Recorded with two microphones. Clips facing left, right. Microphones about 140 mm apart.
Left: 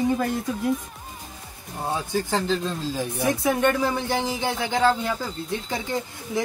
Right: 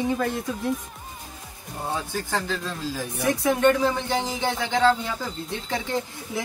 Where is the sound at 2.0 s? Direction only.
20° left (ahead or behind).